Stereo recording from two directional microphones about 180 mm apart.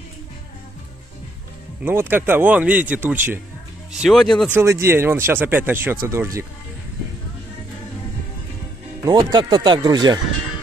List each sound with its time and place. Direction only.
1.8 s speech: 10° right (ahead or behind)
4.6 s speech: 15° right (ahead or behind)
9.0 s speech: 25° right (ahead or behind)